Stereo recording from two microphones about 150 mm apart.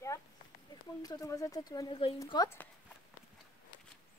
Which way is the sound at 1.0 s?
25° left (ahead or behind).